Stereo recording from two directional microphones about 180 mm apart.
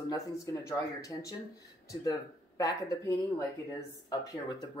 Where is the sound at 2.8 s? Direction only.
20° left (ahead or behind).